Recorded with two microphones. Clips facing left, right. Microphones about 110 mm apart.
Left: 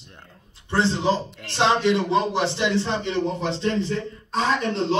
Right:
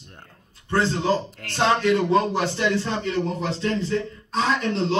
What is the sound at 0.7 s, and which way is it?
A man's voice, 20° left (ahead or behind).